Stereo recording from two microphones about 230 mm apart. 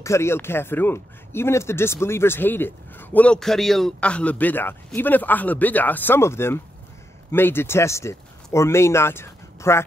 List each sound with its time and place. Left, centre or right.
0.0 s speech: centre